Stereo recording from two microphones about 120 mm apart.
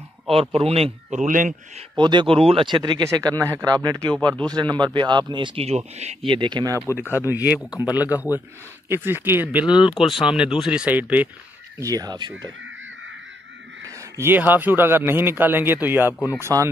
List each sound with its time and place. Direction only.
0.3 s speech: 50° right (ahead or behind)
1.2 s a man's voice: 90° right
2.0 s speech: 40° right (ahead or behind)
5.7 s speech: 65° right (ahead or behind)
6.2 s speech: 40° right (ahead or behind)
7.2 s a man's voice: 15° right (ahead or behind)
11.8 s speech: 30° right (ahead or behind)
13.8 s a man's voice: 20° right (ahead or behind)